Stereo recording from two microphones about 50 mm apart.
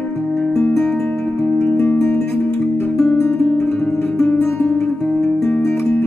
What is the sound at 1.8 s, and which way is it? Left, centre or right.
Music, left.